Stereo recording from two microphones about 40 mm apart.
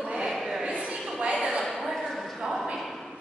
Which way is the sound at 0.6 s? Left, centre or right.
Right.